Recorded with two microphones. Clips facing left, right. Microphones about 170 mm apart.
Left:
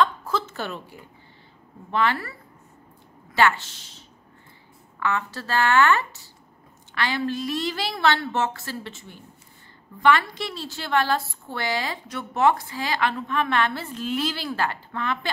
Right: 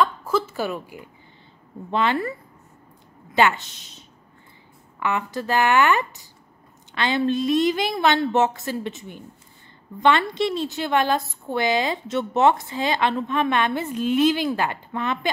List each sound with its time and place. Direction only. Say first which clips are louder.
0.0 s a sound: right 2 dB; 10° right (ahead or behind)
1.9 s a woman's voice: right 2 dB; 20° right (ahead or behind)
3.3 s a woman's voice: right 2 dB; 20° right (ahead or behind)
5.0 s a woman's voice: right 2 dB; 15° right (ahead or behind)